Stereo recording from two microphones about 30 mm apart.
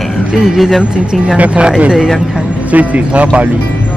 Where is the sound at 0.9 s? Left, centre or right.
Right.